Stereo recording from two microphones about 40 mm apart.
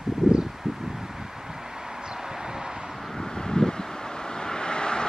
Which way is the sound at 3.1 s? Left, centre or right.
Centre.